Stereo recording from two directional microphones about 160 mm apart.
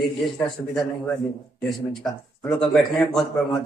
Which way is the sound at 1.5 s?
Centre (ahead or behind).